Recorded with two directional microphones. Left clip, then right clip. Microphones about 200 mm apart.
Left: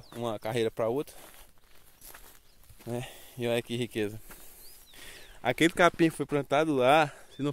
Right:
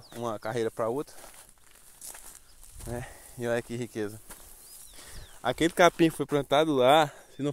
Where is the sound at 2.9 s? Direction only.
10° left (ahead or behind).